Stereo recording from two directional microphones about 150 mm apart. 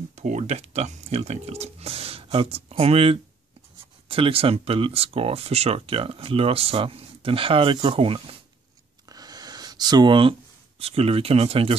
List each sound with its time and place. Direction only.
0.1 s speech: 50° right (ahead or behind)
9.1 s a sound: 25° right (ahead or behind)
10.8 s speech: 40° right (ahead or behind)